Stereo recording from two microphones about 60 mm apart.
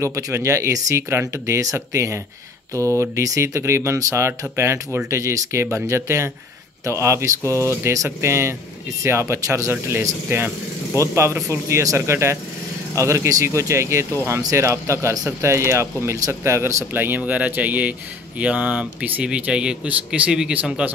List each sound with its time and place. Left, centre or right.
0.0 s speech: right
4.3 s speech: right
16.9 s speech: right
17.2 s speech: right
20.8 s speech: right